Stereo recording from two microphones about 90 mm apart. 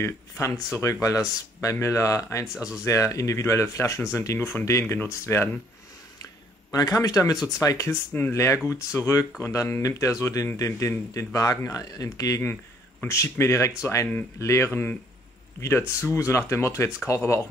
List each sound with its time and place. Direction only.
0.0 s speech: 35° left (ahead or behind)
6.7 s speech: 40° left (ahead or behind)
7.3 s speech: 5° right (ahead or behind)
7.6 s speech: 35° left (ahead or behind)